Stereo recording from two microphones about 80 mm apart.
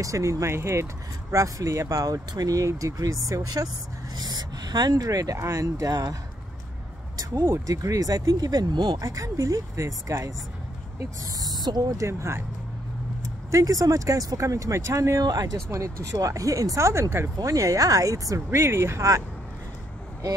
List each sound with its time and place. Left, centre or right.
0.0 s speech: right
7.4 s speech: right
11.4 s a sound: right
12.0 s speech: right
15.2 s speech: right
15.7 s speech: right
18.5 s speech: right